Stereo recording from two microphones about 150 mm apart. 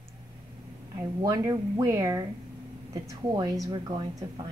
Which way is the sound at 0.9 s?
20° right (ahead or behind).